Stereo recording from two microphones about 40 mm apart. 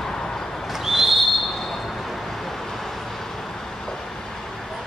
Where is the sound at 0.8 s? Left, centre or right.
Centre.